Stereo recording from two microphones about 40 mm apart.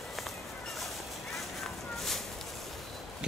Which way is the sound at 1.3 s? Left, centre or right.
Centre.